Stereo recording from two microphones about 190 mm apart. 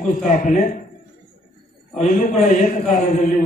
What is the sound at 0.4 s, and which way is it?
Speech, 45° left (ahead or behind).